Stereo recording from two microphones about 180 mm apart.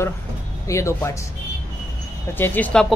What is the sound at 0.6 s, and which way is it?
Speech, 15° left (ahead or behind).